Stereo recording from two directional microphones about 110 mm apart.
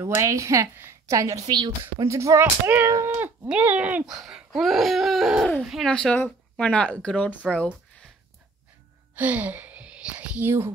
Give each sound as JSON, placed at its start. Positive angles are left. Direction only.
{"t": 0.0, "sound": "a woman's voice", "side_deg": -30}
{"t": 1.8, "sound": "a woman's voice", "side_deg": -25}
{"t": 3.2, "sound": "a sound", "side_deg": -15}
{"t": 5.6, "sound": "speech", "side_deg": 0}
{"t": 9.1, "sound": "whispering", "side_deg": -15}